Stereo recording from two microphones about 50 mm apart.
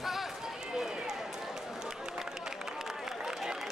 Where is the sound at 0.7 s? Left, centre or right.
Centre.